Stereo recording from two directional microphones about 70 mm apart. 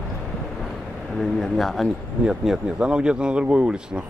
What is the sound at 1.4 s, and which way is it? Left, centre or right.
Speech, centre.